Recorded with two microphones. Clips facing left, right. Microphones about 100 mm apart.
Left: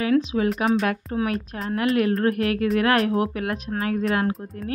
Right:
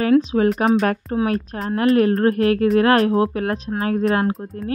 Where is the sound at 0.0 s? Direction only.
40° right (ahead or behind).